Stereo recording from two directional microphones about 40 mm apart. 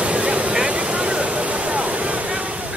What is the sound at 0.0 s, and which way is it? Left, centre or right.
Vehicle, right.